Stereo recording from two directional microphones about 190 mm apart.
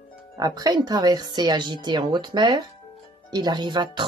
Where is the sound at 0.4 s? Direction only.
20° right (ahead or behind).